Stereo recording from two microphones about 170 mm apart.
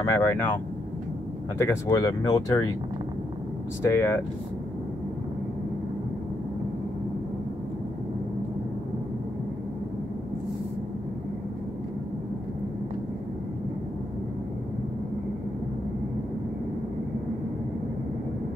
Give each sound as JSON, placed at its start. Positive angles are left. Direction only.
{"t": 0.0, "sound": "speech", "side_deg": 15}
{"t": 1.6, "sound": "speech", "side_deg": 15}
{"t": 3.8, "sound": "speech", "side_deg": 15}